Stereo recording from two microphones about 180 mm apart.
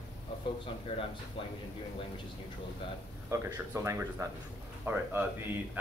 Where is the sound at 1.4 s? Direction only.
30° left (ahead or behind).